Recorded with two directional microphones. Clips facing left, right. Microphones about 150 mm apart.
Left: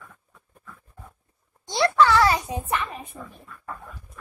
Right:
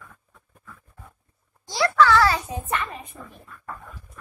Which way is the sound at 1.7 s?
25° left (ahead or behind).